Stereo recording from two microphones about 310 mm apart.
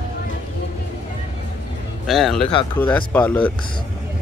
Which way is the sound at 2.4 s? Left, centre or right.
Centre.